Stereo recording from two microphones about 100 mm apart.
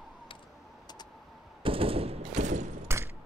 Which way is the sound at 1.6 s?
70° right (ahead or behind).